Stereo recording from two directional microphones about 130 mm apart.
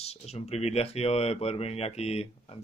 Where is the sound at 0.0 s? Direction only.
55° left (ahead or behind).